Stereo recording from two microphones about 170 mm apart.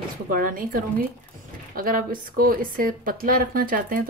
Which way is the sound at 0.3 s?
55° right (ahead or behind).